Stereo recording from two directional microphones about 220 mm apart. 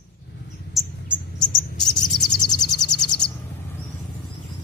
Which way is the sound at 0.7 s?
Centre (ahead or behind).